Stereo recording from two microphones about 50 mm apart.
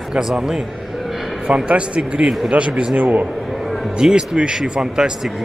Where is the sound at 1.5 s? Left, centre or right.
Right.